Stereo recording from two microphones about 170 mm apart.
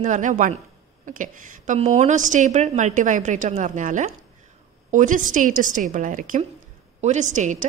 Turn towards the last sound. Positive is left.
turn(degrees=-45)  # may be behind; listen again after turning